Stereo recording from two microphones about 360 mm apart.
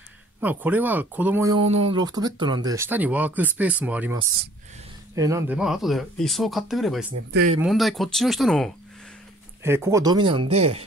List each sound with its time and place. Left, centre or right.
0.4 s speech: centre